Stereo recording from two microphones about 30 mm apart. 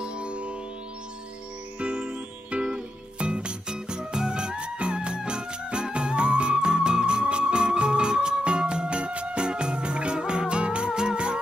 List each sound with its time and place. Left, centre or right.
0.0 s music: right
1.8 s music: right